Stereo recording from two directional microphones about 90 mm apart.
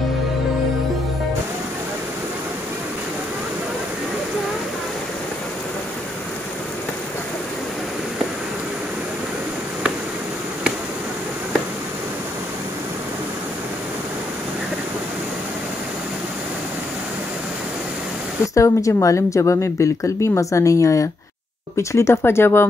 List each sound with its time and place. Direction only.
18.5 s a woman's voice: 35° left (ahead or behind)